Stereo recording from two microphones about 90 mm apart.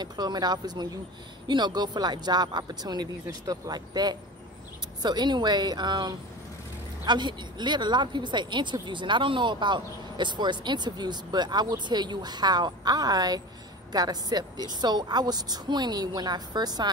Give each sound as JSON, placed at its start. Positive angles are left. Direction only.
{"t": 0.0, "sound": "speech", "side_deg": -50}